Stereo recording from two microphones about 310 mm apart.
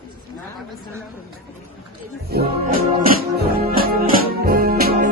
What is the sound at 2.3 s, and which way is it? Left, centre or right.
Music, right.